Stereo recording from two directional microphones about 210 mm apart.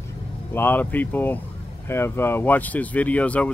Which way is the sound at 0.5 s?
10° left (ahead or behind).